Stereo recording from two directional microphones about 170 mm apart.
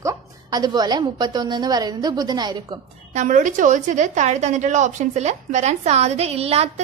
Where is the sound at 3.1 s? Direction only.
45° right (ahead or behind).